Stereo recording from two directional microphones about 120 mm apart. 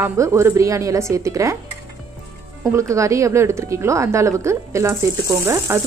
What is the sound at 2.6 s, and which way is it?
Speech, 20° right (ahead or behind).